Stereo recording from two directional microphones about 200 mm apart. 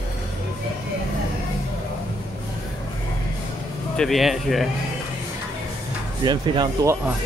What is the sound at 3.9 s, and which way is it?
Speech, centre (ahead or behind).